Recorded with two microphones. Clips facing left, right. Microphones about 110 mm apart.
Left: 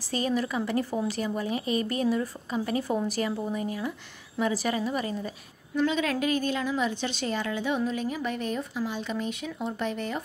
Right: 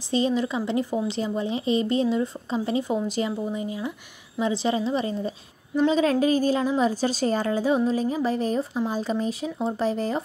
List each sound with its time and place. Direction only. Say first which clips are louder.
0.1 s a woman's voice: right 4 dB; 20° right (ahead or behind)